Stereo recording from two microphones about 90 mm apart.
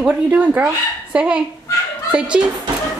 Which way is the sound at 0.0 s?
15° right (ahead or behind).